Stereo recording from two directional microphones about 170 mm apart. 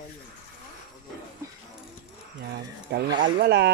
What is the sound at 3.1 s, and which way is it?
Speech, 25° right (ahead or behind).